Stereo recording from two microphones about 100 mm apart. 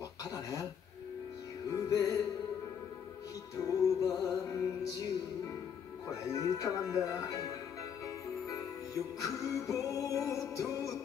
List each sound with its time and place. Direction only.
0.2 s a sound: 35° left (ahead or behind)
1.7 s speech: 35° left (ahead or behind)
3.6 s music: 35° left (ahead or behind)
6.0 s speech: 30° left (ahead or behind)
8.5 s music: 35° left (ahead or behind)